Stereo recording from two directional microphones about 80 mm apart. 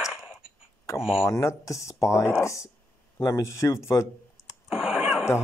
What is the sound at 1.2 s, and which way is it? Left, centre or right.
Speech, left.